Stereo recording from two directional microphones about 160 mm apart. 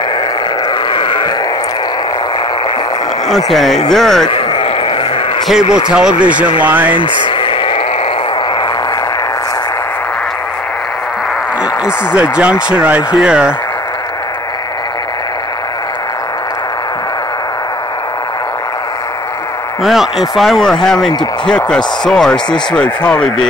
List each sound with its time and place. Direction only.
0.9 s grunt: 30° left (ahead or behind)
3.3 s speech: centre (ahead or behind)
4.3 s a sound: 35° left (ahead or behind)
5.6 s speech: 25° right (ahead or behind)
5.9 s speech: 5° right (ahead or behind)
7.2 s a sound: 35° left (ahead or behind)
11.8 s speech: 5° right (ahead or behind)
19.8 s speech: centre (ahead or behind)